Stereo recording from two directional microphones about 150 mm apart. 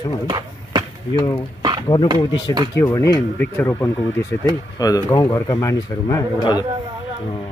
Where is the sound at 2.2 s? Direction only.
25° left (ahead or behind).